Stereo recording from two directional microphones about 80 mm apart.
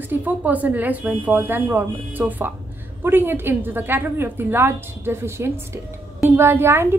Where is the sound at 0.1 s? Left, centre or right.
Right.